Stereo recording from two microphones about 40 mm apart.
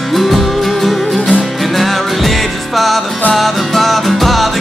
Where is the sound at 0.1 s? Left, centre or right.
Centre.